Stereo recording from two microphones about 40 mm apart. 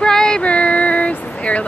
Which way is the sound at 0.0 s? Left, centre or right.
Centre.